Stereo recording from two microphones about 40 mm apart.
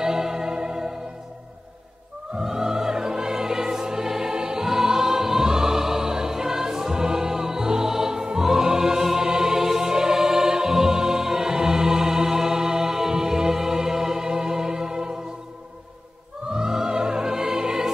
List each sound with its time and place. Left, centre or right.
0.0 s music: centre
2.4 s music: centre
16.4 s music: centre